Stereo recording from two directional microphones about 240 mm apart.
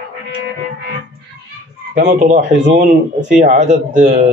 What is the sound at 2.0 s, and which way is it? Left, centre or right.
Speech, right.